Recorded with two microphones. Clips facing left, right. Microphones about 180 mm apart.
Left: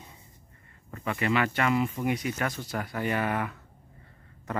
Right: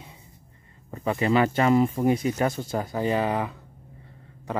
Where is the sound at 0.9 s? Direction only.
30° right (ahead or behind).